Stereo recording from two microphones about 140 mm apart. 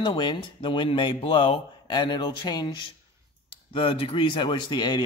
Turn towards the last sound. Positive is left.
turn(degrees=30)  # may be behind; listen again after turning